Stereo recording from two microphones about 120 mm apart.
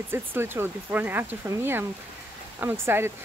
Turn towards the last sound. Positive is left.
turn(degrees=-20)  # may be behind; listen again after turning